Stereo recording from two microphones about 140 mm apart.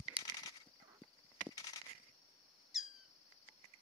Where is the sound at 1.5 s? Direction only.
25° left (ahead or behind).